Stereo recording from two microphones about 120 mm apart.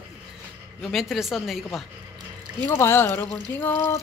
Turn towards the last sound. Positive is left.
turn(degrees=20)  # may be behind; listen again after turning